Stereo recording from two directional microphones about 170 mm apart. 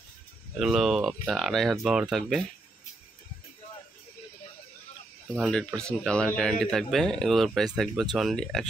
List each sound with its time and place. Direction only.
0.6 s speech: centre (ahead or behind)
5.3 s speech: centre (ahead or behind)